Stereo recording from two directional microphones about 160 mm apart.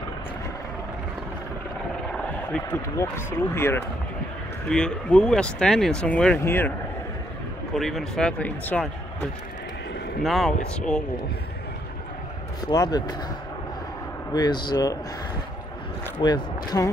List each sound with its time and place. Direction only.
2.2 s speech: 10° left (ahead or behind)
4.6 s speech: 5° left (ahead or behind)
7.7 s speech: centre (ahead or behind)
10.2 s speech: centre (ahead or behind)
12.6 s speech: 25° left (ahead or behind)
14.3 s speech: 25° left (ahead or behind)
16.2 s speech: 25° left (ahead or behind)